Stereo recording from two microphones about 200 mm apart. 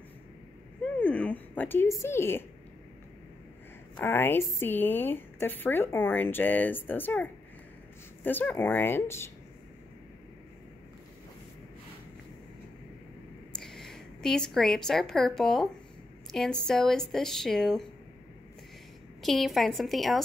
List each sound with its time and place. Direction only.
0.9 s speech: 5° left (ahead or behind)
3.9 s a woman's voice: 10° left (ahead or behind)
13.5 s a woman's voice: centre (ahead or behind)
19.2 s speech: centre (ahead or behind)